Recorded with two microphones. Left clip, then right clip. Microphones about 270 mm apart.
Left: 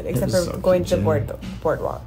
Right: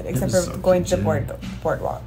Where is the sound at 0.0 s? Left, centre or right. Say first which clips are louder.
Even; centre.